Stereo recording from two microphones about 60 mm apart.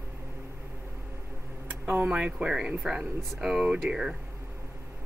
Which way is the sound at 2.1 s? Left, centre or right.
Centre.